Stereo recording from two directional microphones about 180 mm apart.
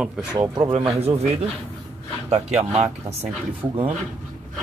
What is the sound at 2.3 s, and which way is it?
Speech, 35° right (ahead or behind).